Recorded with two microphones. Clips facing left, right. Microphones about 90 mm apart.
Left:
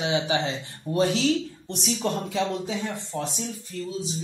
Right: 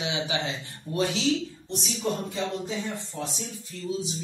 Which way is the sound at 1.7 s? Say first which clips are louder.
Left 3 dB; 75° left (ahead or behind).